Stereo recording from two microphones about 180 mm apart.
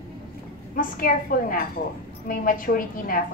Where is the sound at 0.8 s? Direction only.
50° left (ahead or behind).